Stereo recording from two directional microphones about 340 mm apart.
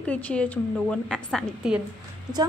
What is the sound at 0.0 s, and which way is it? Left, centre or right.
A woman's voice, centre.